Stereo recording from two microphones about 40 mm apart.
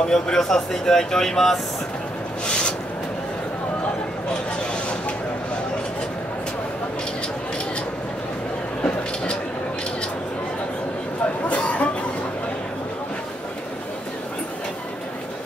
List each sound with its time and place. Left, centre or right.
0.0 s speech: centre
8.8 s a sound: left
11.4 s chatter: left